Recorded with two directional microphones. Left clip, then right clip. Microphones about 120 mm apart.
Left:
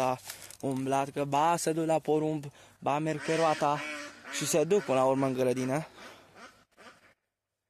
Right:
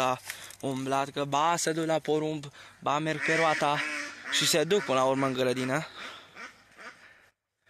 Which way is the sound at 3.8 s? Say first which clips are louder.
Right 6 dB; 50° right (ahead or behind).